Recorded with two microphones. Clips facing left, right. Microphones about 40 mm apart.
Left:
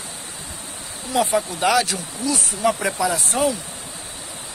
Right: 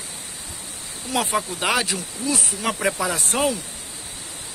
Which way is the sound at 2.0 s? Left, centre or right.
Right.